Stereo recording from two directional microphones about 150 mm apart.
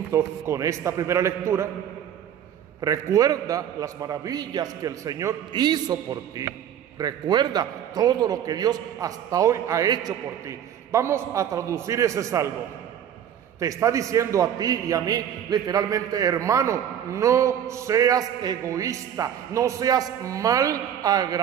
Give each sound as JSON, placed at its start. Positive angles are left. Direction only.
{"t": 0.1, "sound": "a man's voice", "side_deg": -20}
{"t": 2.8, "sound": "a man's voice", "side_deg": -20}
{"t": 13.6, "sound": "a man's voice", "side_deg": -20}